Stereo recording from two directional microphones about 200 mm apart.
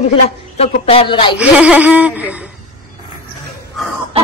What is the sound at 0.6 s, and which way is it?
Speech, 30° left (ahead or behind).